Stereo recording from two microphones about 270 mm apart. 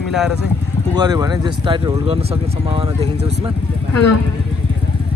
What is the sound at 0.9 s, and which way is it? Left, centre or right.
Speech, centre.